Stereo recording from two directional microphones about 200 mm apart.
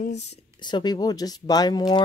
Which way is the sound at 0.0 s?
35° left (ahead or behind).